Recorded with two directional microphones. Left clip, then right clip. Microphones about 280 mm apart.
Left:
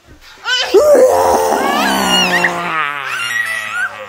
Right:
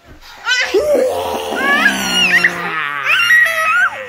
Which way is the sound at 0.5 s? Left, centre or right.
Centre.